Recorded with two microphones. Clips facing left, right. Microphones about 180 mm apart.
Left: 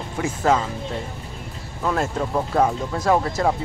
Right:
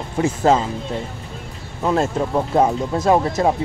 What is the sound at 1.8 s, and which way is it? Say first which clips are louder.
Speech: right 4 dB; 25° right (ahead or behind).